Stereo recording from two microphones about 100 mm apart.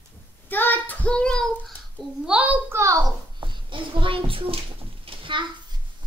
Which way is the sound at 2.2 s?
10° right (ahead or behind).